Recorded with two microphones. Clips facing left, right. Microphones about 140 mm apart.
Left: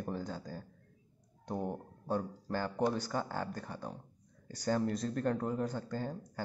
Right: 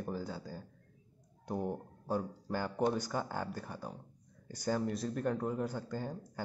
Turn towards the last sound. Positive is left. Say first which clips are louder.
# left 1 dB
turn(degrees=-10)  # may be behind; listen again after turning